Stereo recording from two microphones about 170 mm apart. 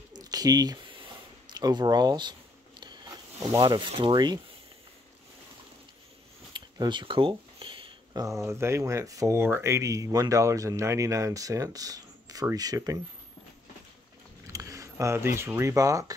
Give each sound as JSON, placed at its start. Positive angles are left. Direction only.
{"t": 0.1, "sound": "a sound", "side_deg": -20}
{"t": 1.5, "sound": "speech", "side_deg": -25}
{"t": 6.5, "sound": "speech", "side_deg": -25}
{"t": 14.5, "sound": "speech", "side_deg": -20}